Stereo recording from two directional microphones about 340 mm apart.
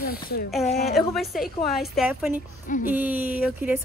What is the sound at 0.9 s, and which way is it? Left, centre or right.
Speech, centre.